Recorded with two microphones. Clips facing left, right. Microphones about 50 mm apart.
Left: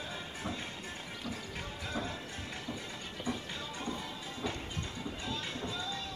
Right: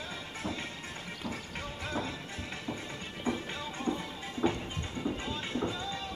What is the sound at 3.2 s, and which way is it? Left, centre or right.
Music, right.